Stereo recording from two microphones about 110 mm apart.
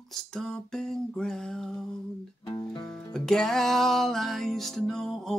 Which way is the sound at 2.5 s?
40° left (ahead or behind).